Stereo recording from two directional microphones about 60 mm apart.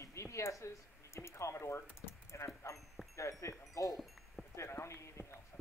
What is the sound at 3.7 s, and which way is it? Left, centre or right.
Wind chime, left.